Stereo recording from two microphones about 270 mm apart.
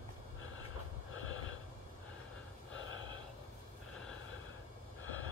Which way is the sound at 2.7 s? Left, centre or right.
Left.